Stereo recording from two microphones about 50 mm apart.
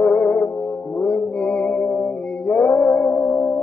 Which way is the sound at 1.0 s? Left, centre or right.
Left.